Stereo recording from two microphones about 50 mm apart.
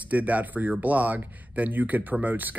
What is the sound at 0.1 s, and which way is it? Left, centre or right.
Speech, right.